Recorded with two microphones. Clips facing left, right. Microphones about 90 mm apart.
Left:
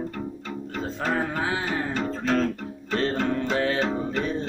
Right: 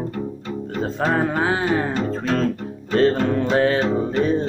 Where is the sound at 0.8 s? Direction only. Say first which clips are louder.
Right 6 dB; 55° right (ahead or behind).